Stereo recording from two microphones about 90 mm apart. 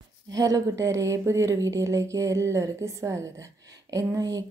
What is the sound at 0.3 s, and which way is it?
A woman's voice, 40° right (ahead or behind).